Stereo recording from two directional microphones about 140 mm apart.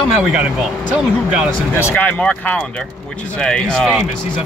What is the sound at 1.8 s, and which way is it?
Speech, 15° left (ahead or behind).